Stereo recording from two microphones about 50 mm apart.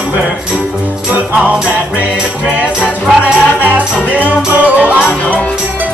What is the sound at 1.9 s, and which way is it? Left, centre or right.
Music, right.